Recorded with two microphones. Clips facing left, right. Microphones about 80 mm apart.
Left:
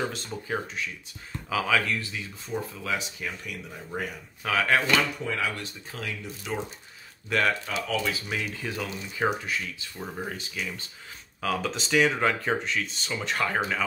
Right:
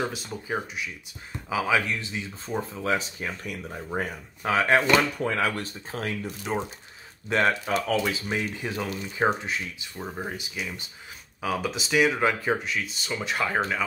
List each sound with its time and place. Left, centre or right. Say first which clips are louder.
0.0 s speech: right 1 dB; centre
4.8 s speech: right 3 dB; right; by 13.6 s centre